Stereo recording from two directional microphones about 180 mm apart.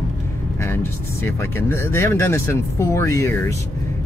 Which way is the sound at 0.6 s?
15° left (ahead or behind).